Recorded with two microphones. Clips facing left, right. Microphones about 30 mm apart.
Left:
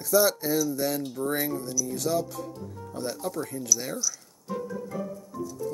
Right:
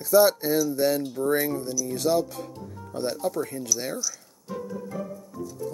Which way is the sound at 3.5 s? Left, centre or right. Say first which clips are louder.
Right 1 dB; right.